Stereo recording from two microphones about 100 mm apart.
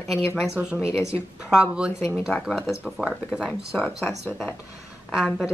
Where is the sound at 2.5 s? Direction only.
5° left (ahead or behind).